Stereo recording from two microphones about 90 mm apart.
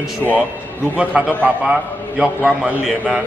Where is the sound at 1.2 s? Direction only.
10° right (ahead or behind).